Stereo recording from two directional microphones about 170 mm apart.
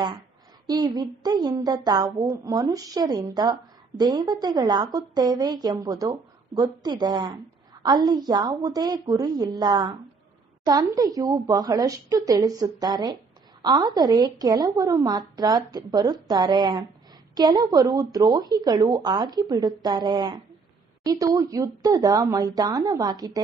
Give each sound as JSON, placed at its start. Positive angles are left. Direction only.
{"t": 0.7, "sound": "a woman's voice", "side_deg": -25}